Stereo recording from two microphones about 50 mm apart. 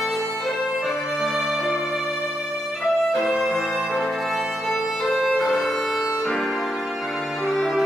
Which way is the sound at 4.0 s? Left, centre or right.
Centre.